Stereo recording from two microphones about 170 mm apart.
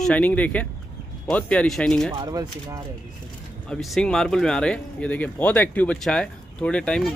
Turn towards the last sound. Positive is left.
turn(degrees=5)  # may be behind; listen again after turning